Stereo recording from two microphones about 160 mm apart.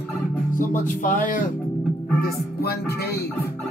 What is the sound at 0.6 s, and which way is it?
Speech, 55° left (ahead or behind).